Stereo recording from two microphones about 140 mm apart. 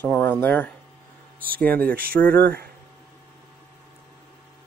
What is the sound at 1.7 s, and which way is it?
Speech, 90° right.